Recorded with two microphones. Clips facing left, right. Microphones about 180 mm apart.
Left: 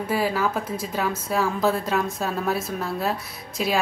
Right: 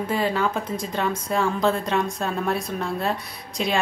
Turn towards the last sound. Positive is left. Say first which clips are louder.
# even
turn(degrees=5)  # may be behind; listen again after turning